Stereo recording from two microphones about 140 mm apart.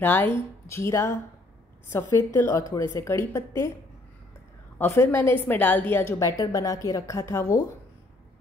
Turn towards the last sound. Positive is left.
turn(degrees=20)  # may be behind; listen again after turning